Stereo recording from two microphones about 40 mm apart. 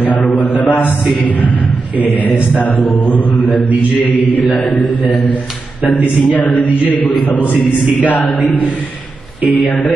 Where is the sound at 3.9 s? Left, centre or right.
Left.